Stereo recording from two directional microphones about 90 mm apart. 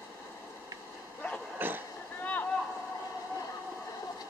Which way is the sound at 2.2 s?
20° left (ahead or behind).